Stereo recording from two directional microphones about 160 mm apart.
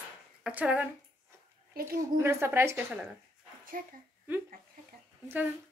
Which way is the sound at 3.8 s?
55° right (ahead or behind).